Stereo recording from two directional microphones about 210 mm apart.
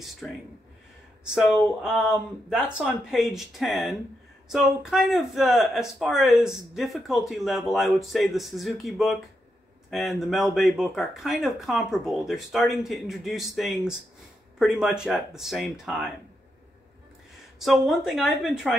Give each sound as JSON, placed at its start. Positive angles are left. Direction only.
{"t": 0.2, "sound": "speech", "side_deg": 0}
{"t": 17.6, "sound": "speech", "side_deg": 0}